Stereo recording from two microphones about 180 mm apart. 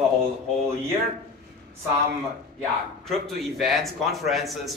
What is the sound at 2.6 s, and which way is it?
Speech, centre (ahead or behind).